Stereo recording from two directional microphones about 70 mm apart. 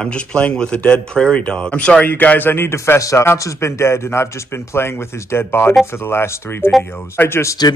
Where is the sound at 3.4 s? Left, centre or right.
Left.